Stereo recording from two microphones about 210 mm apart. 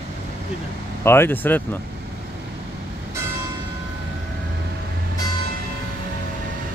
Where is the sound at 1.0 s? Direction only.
10° left (ahead or behind).